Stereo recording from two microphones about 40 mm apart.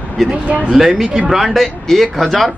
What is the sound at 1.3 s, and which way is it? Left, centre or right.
Speech, centre.